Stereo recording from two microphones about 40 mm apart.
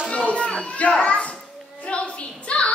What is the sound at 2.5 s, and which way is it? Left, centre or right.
Music, left.